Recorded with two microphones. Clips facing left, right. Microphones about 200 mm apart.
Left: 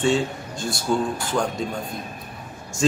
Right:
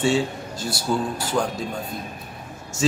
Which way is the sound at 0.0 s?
5° right (ahead or behind).